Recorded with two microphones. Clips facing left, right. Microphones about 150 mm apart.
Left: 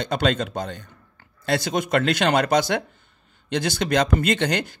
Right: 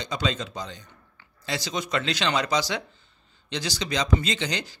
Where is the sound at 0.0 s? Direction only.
60° left (ahead or behind).